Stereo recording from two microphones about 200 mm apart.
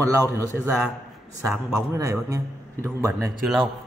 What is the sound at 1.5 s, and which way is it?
A man's voice, 15° right (ahead or behind).